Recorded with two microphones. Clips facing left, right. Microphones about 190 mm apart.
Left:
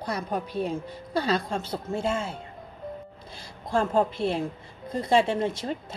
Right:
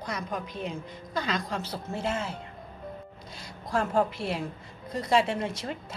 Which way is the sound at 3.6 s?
25° left (ahead or behind).